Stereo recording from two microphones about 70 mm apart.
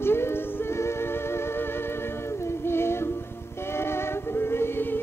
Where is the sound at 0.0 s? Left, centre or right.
Left.